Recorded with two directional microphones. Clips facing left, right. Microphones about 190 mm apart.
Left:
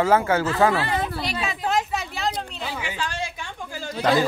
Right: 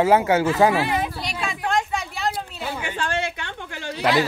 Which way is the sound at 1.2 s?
5° left (ahead or behind).